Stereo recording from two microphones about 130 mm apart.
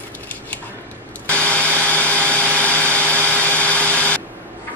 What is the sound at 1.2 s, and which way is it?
Blender, 10° left (ahead or behind).